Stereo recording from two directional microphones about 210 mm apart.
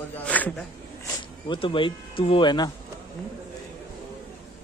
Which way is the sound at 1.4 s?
25° left (ahead or behind).